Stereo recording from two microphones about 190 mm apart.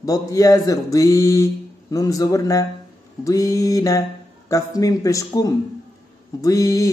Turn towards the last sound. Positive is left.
turn(degrees=15)  # may be behind; listen again after turning